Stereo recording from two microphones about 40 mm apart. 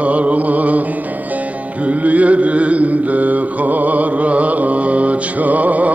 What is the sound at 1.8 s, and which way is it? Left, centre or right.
Mantra, right.